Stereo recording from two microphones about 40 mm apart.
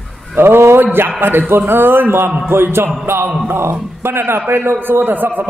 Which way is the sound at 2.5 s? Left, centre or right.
Right.